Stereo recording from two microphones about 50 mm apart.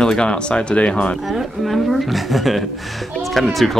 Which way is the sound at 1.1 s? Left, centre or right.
Centre.